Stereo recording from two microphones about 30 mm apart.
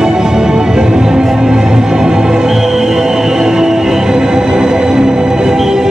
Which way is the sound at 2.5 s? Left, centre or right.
Centre.